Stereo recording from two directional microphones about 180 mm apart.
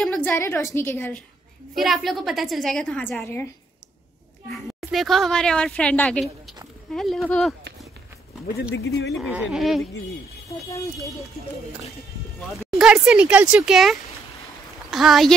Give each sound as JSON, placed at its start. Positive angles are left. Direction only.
{"t": 0.0, "sound": "a woman's voice", "side_deg": 5}
{"t": 1.8, "sound": "a woman's voice", "side_deg": 0}
{"t": 4.5, "sound": "a woman's voice", "side_deg": 0}
{"t": 8.7, "sound": "speech", "side_deg": 70}
{"t": 9.1, "sound": "a woman's voice", "side_deg": -5}
{"t": 10.7, "sound": "a woman's voice", "side_deg": 15}
{"t": 12.5, "sound": "a woman's voice", "side_deg": -5}